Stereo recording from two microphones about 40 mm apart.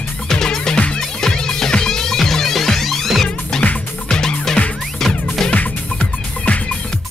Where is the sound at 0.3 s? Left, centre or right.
Centre.